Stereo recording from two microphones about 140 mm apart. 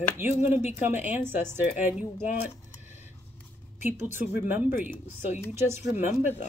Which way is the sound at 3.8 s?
15° right (ahead or behind).